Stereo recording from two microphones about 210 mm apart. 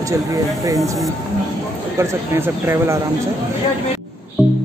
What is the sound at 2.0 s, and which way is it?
Speech, 10° right (ahead or behind).